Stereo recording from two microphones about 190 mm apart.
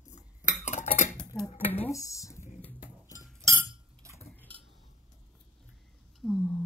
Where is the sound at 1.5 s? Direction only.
35° left (ahead or behind).